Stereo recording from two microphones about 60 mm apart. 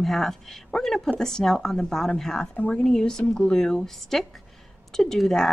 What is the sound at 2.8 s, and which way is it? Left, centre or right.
A woman's voice, centre.